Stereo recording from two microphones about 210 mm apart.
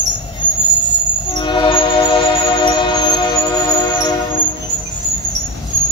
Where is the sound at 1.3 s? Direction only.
20° left (ahead or behind).